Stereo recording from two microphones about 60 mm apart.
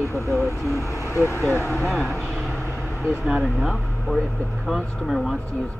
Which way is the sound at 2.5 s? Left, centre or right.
Left.